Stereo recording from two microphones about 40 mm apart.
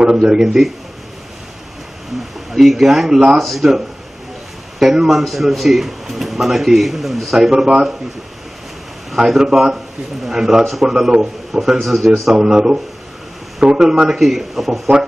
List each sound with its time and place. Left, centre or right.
0.0 s a man's voice: centre
2.5 s speech: centre
3.3 s speech: centre
7.6 s a man's voice: right
9.1 s speech: centre
10.6 s speech: centre
10.9 s speech: centre
12.4 s speech: centre